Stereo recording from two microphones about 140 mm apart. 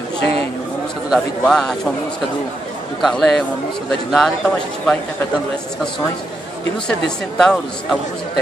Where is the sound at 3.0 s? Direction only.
Centre (ahead or behind).